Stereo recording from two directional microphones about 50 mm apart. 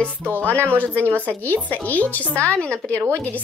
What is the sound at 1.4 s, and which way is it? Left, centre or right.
Speech, left.